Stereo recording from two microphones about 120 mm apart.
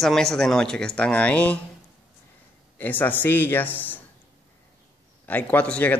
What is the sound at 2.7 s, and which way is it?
Speech, 15° left (ahead or behind).